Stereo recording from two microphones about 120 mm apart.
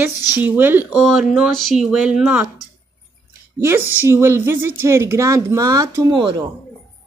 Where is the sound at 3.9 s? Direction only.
20° right (ahead or behind); by 6.3 s 35° right (ahead or behind).